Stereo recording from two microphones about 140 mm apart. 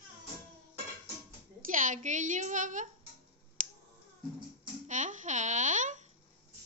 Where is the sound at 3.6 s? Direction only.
70° right (ahead or behind).